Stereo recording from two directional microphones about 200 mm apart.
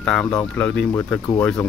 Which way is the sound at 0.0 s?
5° left (ahead or behind).